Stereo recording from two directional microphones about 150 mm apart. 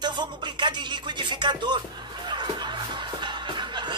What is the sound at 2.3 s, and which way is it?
Music, 30° right (ahead or behind).